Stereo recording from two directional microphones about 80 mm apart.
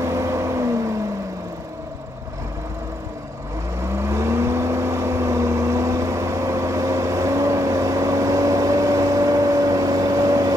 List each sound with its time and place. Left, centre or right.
0.0 s vehicle: right
3.8 s vehicle: right